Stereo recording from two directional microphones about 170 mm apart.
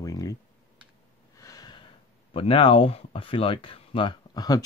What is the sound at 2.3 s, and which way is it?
Speech, 35° left (ahead or behind).